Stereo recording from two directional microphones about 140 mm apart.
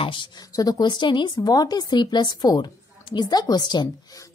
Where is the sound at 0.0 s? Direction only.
35° left (ahead or behind).